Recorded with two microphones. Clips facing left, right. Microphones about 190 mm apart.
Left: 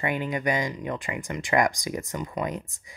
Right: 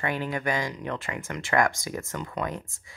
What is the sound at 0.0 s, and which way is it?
Speech, 15° left (ahead or behind).